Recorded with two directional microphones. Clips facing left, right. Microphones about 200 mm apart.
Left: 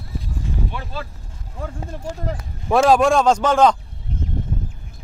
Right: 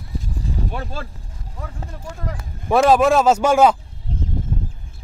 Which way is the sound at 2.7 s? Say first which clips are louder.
Even; centre (ahead or behind).